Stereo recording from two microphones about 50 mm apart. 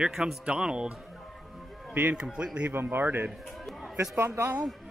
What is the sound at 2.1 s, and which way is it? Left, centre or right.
Speech, centre.